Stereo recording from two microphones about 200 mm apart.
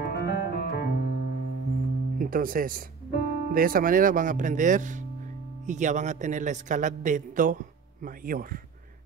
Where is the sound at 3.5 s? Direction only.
45° right (ahead or behind).